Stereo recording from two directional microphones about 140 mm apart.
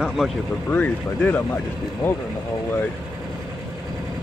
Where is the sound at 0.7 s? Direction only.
10° left (ahead or behind).